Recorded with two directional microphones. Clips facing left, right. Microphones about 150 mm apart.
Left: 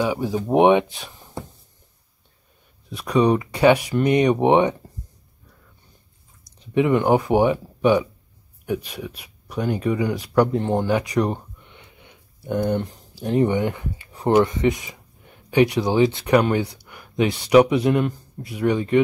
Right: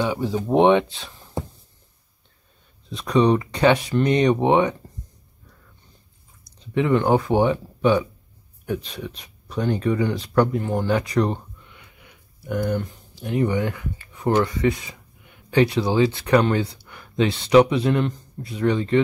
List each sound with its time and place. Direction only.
0.0 s speech: 10° left (ahead or behind)
2.9 s speech: 10° left (ahead or behind)
6.6 s speech: 15° left (ahead or behind)
10.5 s speech: 25° left (ahead or behind)
10.9 s speech: 15° left (ahead or behind)
11.6 s a sound: 25° left (ahead or behind)
12.9 s speech: 40° left (ahead or behind)
13.5 s speech: 20° left (ahead or behind)